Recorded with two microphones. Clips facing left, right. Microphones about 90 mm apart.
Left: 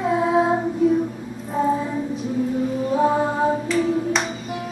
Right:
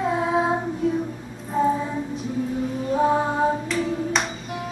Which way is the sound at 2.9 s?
Centre (ahead or behind).